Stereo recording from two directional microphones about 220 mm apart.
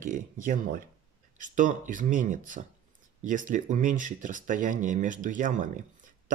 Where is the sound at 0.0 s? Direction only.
35° right (ahead or behind).